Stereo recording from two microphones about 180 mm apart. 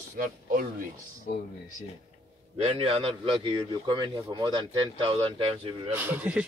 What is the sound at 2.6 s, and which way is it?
A man's voice, 35° right (ahead or behind).